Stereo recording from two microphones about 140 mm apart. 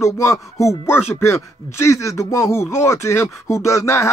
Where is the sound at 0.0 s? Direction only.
20° left (ahead or behind).